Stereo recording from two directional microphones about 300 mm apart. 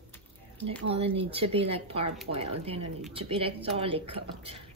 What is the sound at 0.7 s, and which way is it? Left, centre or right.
Speech, centre.